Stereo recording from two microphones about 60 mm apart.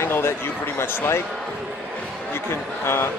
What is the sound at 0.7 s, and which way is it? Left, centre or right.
Speech, left.